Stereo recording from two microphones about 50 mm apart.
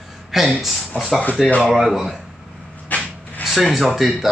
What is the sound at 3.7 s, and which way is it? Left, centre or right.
Speech, centre.